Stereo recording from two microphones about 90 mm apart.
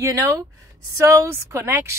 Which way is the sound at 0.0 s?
35° right (ahead or behind).